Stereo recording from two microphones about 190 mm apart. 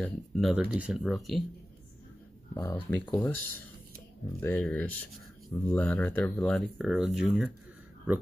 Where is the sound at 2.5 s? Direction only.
20° left (ahead or behind).